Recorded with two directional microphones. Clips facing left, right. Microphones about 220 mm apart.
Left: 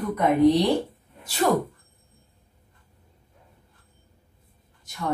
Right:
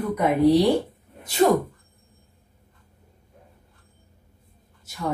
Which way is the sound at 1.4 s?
25° right (ahead or behind).